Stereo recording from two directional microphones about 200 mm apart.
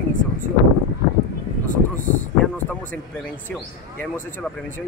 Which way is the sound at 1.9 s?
45° right (ahead or behind).